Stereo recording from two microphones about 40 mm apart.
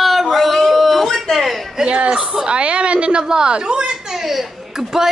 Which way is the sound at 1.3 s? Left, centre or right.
Centre.